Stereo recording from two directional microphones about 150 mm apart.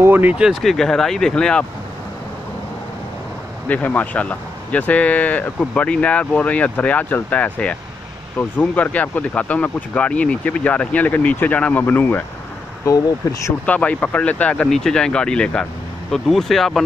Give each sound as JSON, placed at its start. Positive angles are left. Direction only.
{"t": 0.0, "sound": "speech", "side_deg": -10}
{"t": 3.6, "sound": "speech", "side_deg": 10}
{"t": 13.7, "sound": "speech", "side_deg": 10}